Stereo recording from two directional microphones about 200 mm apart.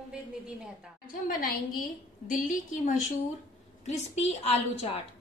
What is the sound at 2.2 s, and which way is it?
A woman's voice, 40° left (ahead or behind).